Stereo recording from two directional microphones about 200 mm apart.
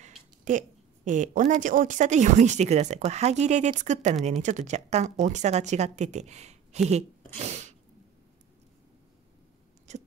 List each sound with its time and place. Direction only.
0.5 s a woman's voice: 40° right (ahead or behind)
7.3 s sneeze: 35° right (ahead or behind)